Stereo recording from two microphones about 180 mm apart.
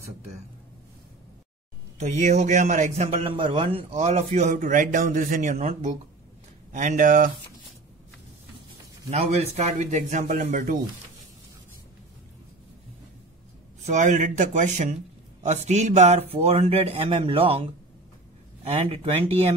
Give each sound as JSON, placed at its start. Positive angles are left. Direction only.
{"t": 2.0, "sound": "a man's voice", "side_deg": -40}
{"t": 3.3, "sound": "a man's voice", "side_deg": -30}
{"t": 9.1, "sound": "a man's voice", "side_deg": -35}
{"t": 13.8, "sound": "a man's voice", "side_deg": -40}